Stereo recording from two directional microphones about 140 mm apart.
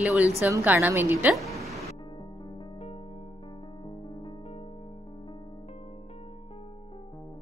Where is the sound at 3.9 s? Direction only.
30° left (ahead or behind).